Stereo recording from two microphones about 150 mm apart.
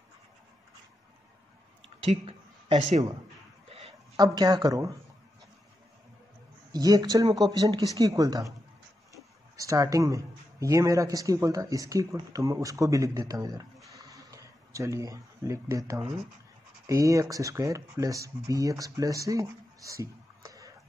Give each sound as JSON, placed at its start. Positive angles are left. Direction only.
{"t": 2.0, "sound": "a sound", "side_deg": -45}
{"t": 4.2, "sound": "speech", "side_deg": -25}
{"t": 6.7, "sound": "speech", "side_deg": -25}
{"t": 9.6, "sound": "speech", "side_deg": -25}
{"t": 13.9, "sound": "a sound", "side_deg": -20}
{"t": 16.8, "sound": "speech", "side_deg": -20}